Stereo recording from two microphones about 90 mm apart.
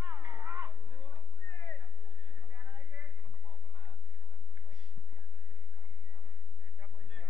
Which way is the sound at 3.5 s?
55° left (ahead or behind).